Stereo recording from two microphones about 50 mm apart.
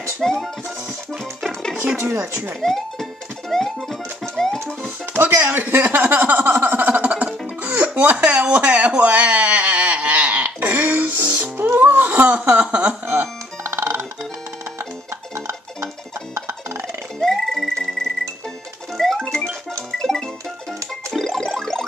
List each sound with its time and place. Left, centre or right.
0.2 s speech: centre
2.1 s speech: right
2.6 s music: centre
4.8 s music: right
5.7 s a sound: right
6.8 s music: right
7.8 s a sound: right
10.6 s music: right
13.0 s music: right
16.3 s music: right
17.2 s music: centre
19.2 s music: centre